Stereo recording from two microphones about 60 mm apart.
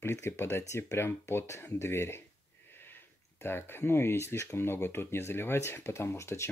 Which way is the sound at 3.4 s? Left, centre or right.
Left.